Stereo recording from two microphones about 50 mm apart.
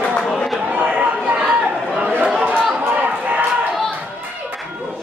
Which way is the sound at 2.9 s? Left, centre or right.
Right.